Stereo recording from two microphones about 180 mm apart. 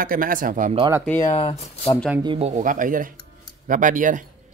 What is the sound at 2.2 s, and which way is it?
Speech, 35° right (ahead or behind).